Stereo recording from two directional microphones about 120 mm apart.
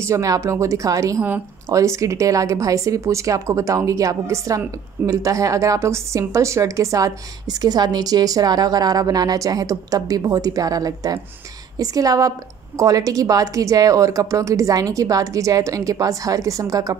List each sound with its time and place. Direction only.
0.0 s a woman's voice: 25° right (ahead or behind)